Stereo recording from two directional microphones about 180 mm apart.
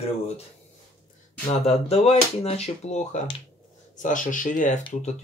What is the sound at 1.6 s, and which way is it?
Speech, 35° left (ahead or behind).